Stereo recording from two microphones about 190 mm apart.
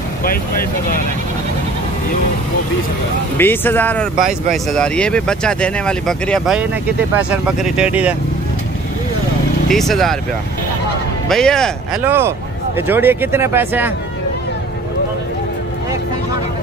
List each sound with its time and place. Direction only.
0.2 s speech: 50° left (ahead or behind)
3.3 s speech: 10° left (ahead or behind); by 8.2 s 5° right (ahead or behind)
9.7 s speech: centre (ahead or behind)
11.2 s speech: 5° left (ahead or behind)
12.0 s speech: 10° right (ahead or behind)